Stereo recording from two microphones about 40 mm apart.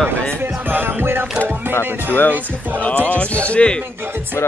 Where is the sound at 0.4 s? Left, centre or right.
Right.